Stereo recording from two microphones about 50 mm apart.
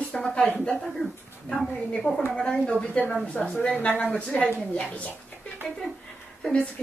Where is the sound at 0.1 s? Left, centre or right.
Centre.